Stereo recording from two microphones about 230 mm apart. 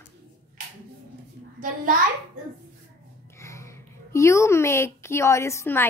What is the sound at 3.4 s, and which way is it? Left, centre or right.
A woman's voice, centre.